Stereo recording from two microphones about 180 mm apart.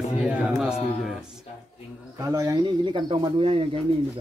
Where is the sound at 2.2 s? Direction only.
15° right (ahead or behind).